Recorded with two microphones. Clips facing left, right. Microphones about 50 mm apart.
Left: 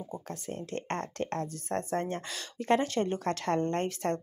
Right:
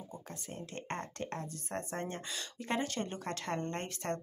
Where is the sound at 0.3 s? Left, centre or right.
Left.